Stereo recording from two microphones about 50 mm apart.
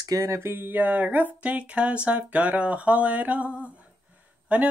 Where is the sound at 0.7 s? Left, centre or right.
Right.